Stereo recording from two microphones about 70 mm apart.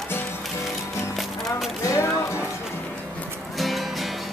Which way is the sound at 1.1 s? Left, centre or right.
Centre.